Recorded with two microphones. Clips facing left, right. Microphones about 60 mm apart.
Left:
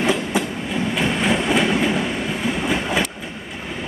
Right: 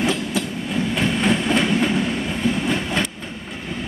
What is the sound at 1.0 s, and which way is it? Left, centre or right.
Train, centre.